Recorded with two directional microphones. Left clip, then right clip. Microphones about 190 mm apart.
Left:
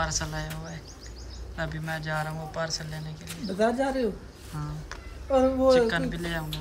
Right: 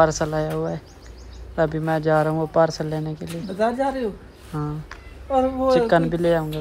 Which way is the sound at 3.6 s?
15° right (ahead or behind).